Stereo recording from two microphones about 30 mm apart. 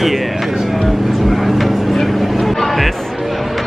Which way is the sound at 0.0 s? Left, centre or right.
Centre.